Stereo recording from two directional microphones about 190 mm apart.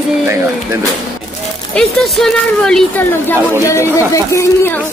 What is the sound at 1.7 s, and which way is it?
Speech, 5° left (ahead or behind).